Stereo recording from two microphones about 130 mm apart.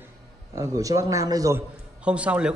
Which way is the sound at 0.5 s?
25° right (ahead or behind).